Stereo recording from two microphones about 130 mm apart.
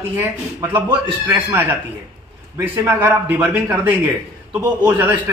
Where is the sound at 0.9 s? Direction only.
10° right (ahead or behind).